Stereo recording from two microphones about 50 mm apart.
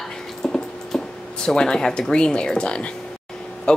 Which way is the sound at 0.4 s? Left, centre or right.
Centre.